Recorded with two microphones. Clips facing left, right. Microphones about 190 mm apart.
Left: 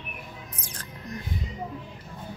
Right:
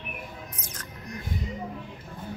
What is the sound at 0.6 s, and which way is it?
Music, 30° left (ahead or behind).